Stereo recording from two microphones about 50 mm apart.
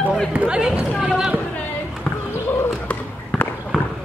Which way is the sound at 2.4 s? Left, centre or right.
Left.